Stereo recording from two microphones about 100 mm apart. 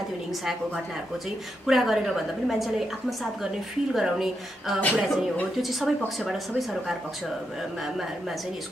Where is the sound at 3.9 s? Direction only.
5° right (ahead or behind).